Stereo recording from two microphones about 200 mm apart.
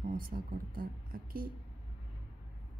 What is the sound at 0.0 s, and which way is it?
Speech, 45° right (ahead or behind).